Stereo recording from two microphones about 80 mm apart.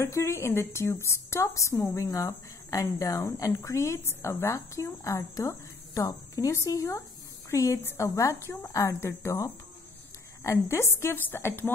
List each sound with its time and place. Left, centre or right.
0.0 s a woman's voice: left